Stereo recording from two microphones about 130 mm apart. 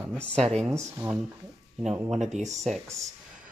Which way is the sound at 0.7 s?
20° right (ahead or behind).